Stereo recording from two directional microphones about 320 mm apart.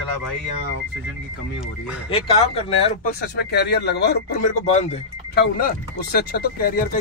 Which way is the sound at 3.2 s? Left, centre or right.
Left.